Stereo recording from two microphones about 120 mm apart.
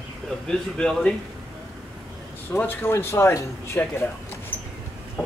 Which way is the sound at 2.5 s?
15° left (ahead or behind).